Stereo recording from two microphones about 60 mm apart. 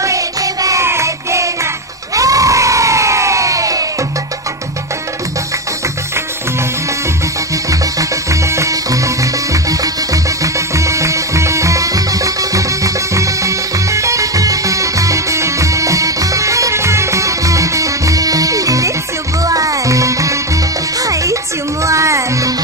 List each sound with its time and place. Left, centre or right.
0.0 s music: right
0.8 s music: right
2.1 s crowd: right
8.0 s music: right